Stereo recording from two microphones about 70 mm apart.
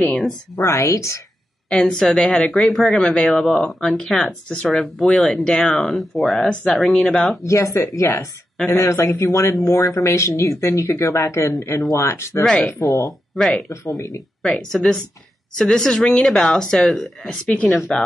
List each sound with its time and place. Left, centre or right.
0.6 s speech: left
1.7 s speech: centre
3.0 s speech: centre
5.9 s speech: centre
7.4 s speech: left
13.3 s speech: centre
13.7 s speech: left
14.4 s speech: centre
17.5 s speech: centre